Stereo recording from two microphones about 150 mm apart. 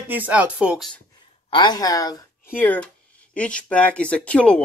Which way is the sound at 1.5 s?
30° left (ahead or behind).